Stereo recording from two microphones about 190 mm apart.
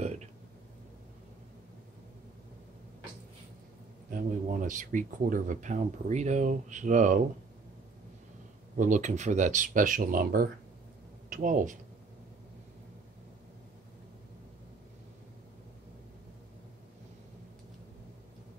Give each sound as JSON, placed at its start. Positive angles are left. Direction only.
{"t": 0.0, "sound": "a sound", "side_deg": -35}
{"t": 4.1, "sound": "speech", "side_deg": -45}
{"t": 8.7, "sound": "speech", "side_deg": -40}